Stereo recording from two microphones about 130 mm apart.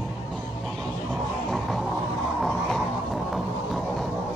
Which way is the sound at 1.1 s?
Centre (ahead or behind).